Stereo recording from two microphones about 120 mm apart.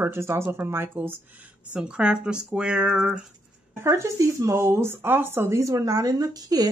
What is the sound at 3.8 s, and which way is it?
Speech, 25° right (ahead or behind).